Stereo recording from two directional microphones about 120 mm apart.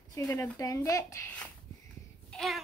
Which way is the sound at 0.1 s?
25° left (ahead or behind).